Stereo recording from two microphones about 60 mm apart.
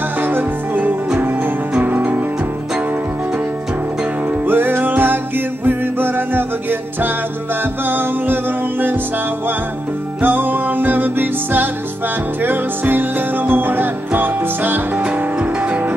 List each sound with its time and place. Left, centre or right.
0.2 s music: right
4.5 s music: right
10.2 s music: right